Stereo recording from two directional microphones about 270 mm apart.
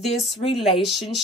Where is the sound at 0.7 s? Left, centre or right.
Centre.